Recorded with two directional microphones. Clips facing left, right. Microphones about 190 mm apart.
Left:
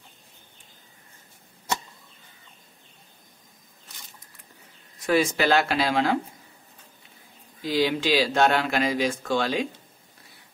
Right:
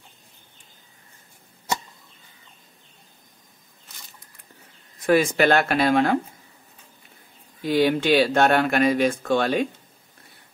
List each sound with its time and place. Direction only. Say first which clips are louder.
5.0 s speech: right 4 dB; 55° right (ahead or behind)
7.6 s speech: right 4 dB; 55° right (ahead or behind)